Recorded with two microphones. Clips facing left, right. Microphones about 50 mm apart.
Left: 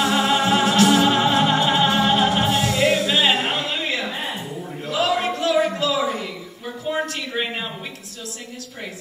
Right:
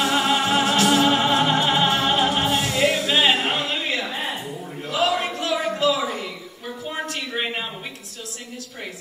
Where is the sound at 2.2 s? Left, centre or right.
Left.